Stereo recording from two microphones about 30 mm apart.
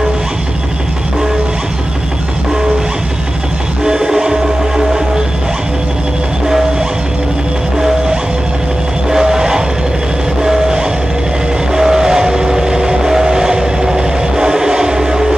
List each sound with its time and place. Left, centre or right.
3.8 s music: right
9.1 s vehicle: centre
10.4 s train: centre